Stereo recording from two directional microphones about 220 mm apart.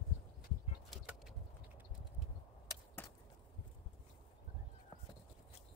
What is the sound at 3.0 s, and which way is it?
Chop, 10° left (ahead or behind).